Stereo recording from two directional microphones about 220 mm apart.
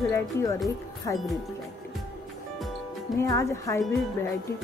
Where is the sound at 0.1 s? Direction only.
15° left (ahead or behind).